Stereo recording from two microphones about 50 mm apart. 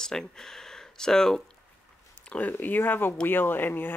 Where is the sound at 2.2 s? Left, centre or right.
Left.